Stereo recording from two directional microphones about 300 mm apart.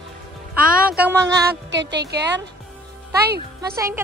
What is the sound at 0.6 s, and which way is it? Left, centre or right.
Speech, right.